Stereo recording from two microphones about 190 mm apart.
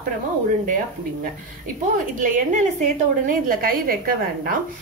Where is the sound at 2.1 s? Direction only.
45° right (ahead or behind).